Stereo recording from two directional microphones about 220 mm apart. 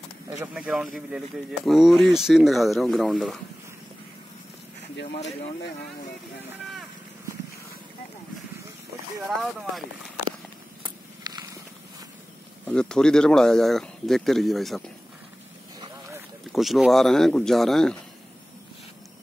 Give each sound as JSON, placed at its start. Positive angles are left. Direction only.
{"t": 0.3, "sound": "speech", "side_deg": -5}
{"t": 4.9, "sound": "speech", "side_deg": 50}
{"t": 10.8, "sound": "a sound", "side_deg": -20}
{"t": 12.6, "sound": "speech", "side_deg": 5}
{"t": 16.5, "sound": "speech", "side_deg": 0}